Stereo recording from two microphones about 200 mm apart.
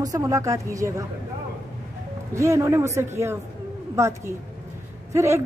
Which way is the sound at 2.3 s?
15° right (ahead or behind).